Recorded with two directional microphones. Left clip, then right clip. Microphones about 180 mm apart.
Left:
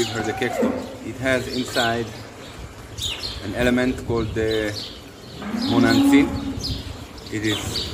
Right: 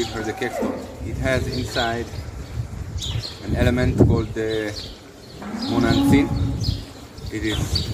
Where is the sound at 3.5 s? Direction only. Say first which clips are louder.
Right 1 dB; 5° left (ahead or behind).